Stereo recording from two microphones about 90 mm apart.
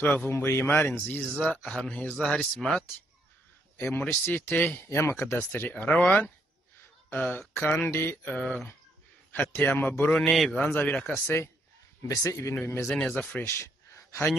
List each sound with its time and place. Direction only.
0.0 s speech: 20° left (ahead or behind)
3.8 s speech: 20° left (ahead or behind)
8.3 s speech: 15° left (ahead or behind)
10.3 s a man's voice: centre (ahead or behind)
10.7 s speech: 20° left (ahead or behind)
13.1 s speech: 20° left (ahead or behind)